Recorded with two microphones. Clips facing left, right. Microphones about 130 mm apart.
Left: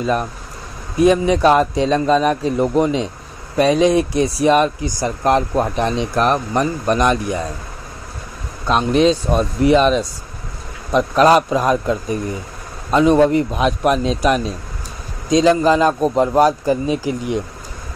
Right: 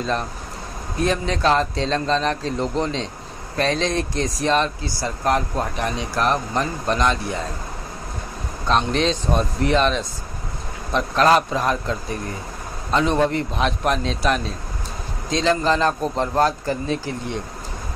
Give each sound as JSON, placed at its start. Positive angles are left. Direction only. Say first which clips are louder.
{"t": 0.0, "sound": "speech", "louder": "left 5 dB", "side_deg": 10}
{"t": 8.6, "sound": "speech", "louder": "left 6 dB", "side_deg": 10}